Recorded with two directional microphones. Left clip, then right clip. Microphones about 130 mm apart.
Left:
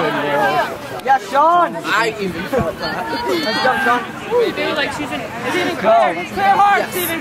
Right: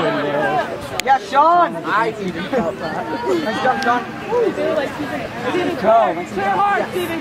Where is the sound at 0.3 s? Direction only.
45° left (ahead or behind).